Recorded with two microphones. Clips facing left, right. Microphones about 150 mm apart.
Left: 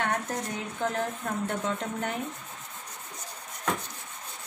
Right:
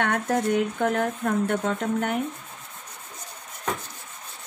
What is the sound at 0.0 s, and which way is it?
Speech, 70° right (ahead or behind).